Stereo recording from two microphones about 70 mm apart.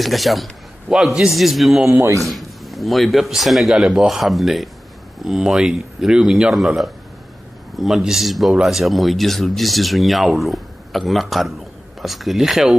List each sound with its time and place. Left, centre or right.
0.0 s speech: centre
1.9 s a man's voice: right
2.2 s speech: centre